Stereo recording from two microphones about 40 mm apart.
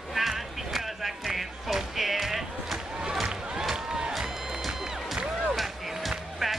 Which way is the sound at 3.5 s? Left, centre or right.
Centre.